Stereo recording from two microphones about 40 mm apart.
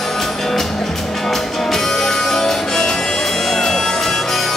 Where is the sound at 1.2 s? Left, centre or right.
Centre.